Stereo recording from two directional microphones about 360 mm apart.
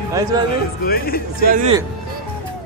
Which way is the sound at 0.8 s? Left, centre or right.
Left.